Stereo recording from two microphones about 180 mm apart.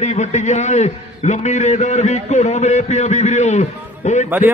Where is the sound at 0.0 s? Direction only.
40° left (ahead or behind).